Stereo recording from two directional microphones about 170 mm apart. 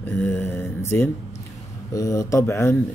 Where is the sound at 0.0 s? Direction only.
10° left (ahead or behind).